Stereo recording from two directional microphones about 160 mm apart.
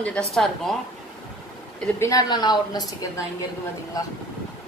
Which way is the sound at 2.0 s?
20° left (ahead or behind).